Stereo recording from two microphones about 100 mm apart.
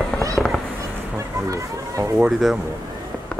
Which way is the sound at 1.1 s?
30° right (ahead or behind).